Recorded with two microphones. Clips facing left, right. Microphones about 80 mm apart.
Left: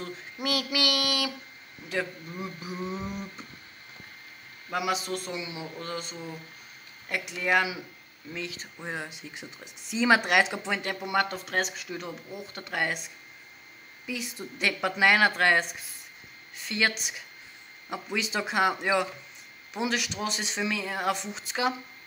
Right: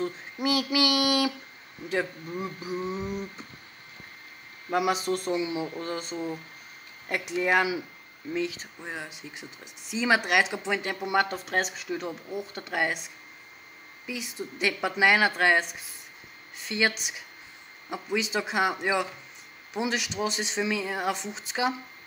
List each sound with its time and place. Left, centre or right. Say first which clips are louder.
0.0 s speech: right 5 dB; right
4.7 s speech: right 4 dB; right
7.3 s speech: right 2 dB; right
8.3 s speech: right 7 dB; centre
8.7 s speech: left 2 dB; centre
14.0 s speech: even; centre